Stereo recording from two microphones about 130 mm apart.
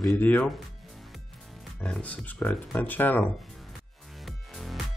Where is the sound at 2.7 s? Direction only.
15° left (ahead or behind).